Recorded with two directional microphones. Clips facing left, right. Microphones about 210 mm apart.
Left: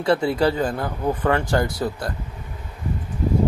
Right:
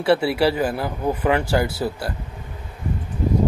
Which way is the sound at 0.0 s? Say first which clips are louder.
Right 1 dB; 10° right (ahead or behind).